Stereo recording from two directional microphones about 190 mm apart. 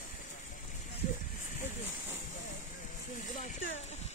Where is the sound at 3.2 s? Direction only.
40° left (ahead or behind).